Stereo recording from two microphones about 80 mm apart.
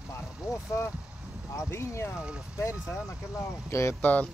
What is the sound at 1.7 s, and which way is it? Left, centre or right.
Speech, left.